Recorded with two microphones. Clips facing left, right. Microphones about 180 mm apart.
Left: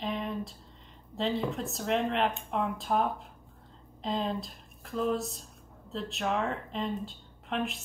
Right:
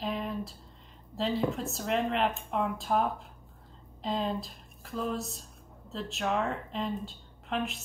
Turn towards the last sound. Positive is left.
turn(degrees=0)  # may be behind; listen again after turning